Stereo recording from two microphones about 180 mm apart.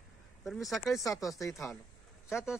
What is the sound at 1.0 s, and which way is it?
Speech, 20° left (ahead or behind).